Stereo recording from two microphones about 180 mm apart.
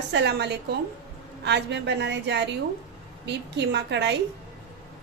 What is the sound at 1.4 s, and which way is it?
A woman's voice, 75° right (ahead or behind).